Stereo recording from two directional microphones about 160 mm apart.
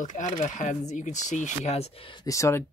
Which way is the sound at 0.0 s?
50° left (ahead or behind).